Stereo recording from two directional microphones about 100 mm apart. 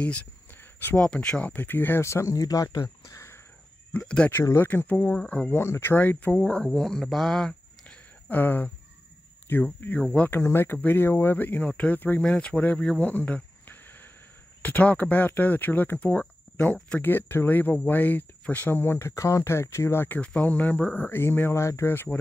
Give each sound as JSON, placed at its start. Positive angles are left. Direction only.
{"t": 0.0, "sound": "a sound", "side_deg": 15}
{"t": 1.0, "sound": "speech", "side_deg": 10}
{"t": 3.9, "sound": "speech", "side_deg": 15}
{"t": 4.3, "sound": "speech", "side_deg": 25}
{"t": 5.2, "sound": "speech", "side_deg": 5}
{"t": 5.5, "sound": "speech", "side_deg": 25}
{"t": 9.8, "sound": "speech", "side_deg": 20}
{"t": 13.0, "sound": "a sound", "side_deg": 15}
{"t": 14.6, "sound": "speech", "side_deg": 15}